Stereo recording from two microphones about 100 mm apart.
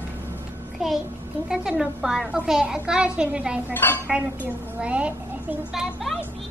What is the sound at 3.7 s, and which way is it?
Speech, 20° left (ahead or behind).